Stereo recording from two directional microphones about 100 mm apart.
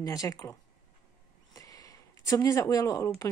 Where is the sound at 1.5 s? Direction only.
35° left (ahead or behind).